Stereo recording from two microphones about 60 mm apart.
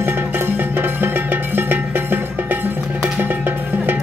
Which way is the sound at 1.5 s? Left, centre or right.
Right.